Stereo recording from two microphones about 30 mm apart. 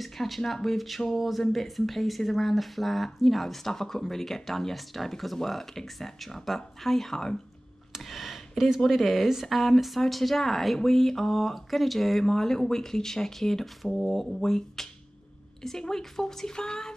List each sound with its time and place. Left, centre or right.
0.0 s speech: centre
8.0 s speech: centre
12.3 s speech: centre
16.5 s music: left